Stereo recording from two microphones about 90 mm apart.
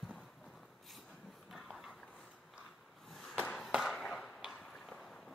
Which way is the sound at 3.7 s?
5° right (ahead or behind).